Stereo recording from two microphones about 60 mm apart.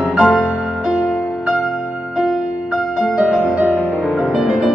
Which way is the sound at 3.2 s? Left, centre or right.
Centre.